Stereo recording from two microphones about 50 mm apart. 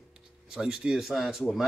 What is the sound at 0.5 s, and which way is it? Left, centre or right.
Speech, centre.